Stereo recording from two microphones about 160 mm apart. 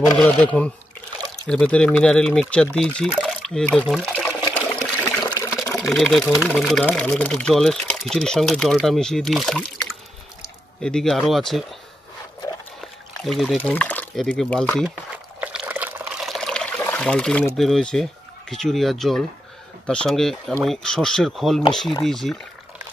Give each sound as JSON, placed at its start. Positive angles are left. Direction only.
{"t": 0.2, "sound": "speech", "side_deg": 5}
{"t": 4.7, "sound": "water", "side_deg": 5}
{"t": 5.6, "sound": "speech", "side_deg": 5}
{"t": 13.2, "sound": "speech", "side_deg": 0}
{"t": 15.4, "sound": "liquid", "side_deg": -10}
{"t": 16.3, "sound": "pour", "side_deg": 5}
{"t": 17.6, "sound": "speech", "side_deg": 5}